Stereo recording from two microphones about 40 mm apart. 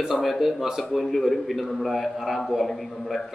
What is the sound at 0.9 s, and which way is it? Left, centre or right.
A man's voice, centre.